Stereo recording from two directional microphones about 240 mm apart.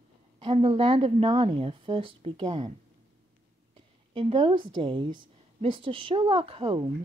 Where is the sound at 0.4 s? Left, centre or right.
Right.